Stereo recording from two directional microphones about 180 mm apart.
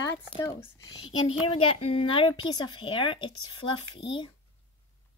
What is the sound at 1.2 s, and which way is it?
Speech, 30° left (ahead or behind).